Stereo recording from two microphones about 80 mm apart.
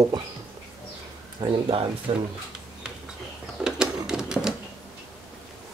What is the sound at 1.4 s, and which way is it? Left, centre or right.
Speech, right.